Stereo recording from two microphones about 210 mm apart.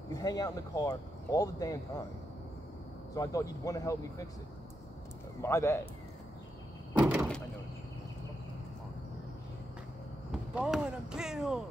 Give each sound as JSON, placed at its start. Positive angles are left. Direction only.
{"t": 0.1, "sound": "speech", "side_deg": 20}
{"t": 3.2, "sound": "speech", "side_deg": 15}
{"t": 5.4, "sound": "speech", "side_deg": 15}
{"t": 7.0, "sound": "door", "side_deg": -5}
{"t": 10.3, "sound": "speech", "side_deg": -5}